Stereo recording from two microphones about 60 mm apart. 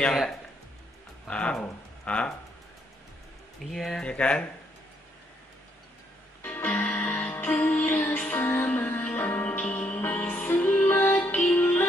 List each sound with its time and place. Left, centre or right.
0.1 s speech: centre
1.2 s speech: centre
3.7 s speech: centre
4.0 s speech: centre
6.4 s music: left
9.5 s music: left